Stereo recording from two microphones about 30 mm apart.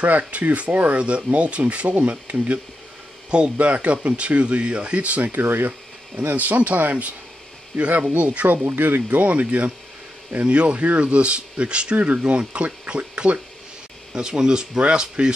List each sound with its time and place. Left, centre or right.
0.3 s speech: right
3.3 s speech: right
3.5 s speech: right
5.3 s speech: right
8.5 s speech: right
9.3 s speech: right
10.3 s speech: right